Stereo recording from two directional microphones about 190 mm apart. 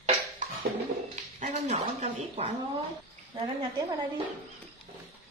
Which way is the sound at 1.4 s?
35° right (ahead or behind).